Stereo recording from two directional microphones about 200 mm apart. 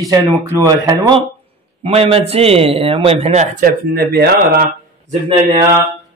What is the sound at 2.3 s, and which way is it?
Speech, 30° right (ahead or behind).